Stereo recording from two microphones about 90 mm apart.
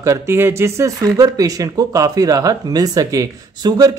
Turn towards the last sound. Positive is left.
turn(degrees=-45)  # may be behind; listen again after turning